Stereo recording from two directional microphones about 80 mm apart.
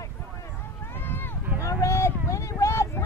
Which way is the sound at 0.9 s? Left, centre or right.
Left.